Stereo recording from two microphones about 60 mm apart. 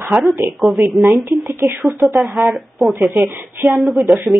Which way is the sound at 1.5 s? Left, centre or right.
Right.